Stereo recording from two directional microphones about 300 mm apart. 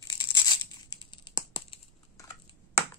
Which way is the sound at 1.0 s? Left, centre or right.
Centre.